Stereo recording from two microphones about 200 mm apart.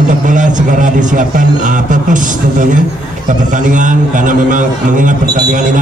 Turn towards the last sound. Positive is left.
turn(degrees=-40)  # may be behind; listen again after turning